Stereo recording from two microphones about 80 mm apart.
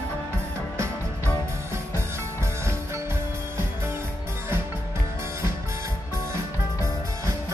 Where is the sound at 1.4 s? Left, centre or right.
Right.